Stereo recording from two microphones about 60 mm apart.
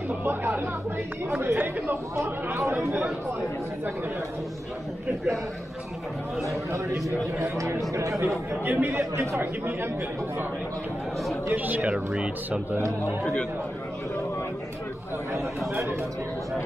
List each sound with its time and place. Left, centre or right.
0.2 s speech: right
2.6 s a man's voice: right
7.1 s a man's voice: right
8.6 s speech: right
8.9 s speech: right
9.4 s speech: right
11.4 s speech: right
11.9 s speech: centre
13.2 s a man's voice: centre